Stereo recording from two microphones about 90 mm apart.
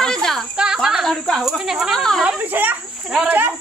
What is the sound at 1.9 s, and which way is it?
Speech, 5° left (ahead or behind).